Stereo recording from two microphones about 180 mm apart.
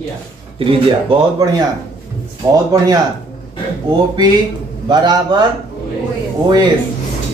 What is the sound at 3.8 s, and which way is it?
Speech, 25° right (ahead or behind).